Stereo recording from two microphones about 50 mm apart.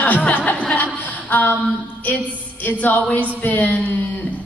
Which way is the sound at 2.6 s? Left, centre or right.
Left.